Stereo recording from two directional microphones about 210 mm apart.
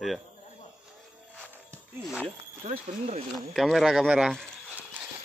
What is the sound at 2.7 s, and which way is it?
Speech, 35° right (ahead or behind).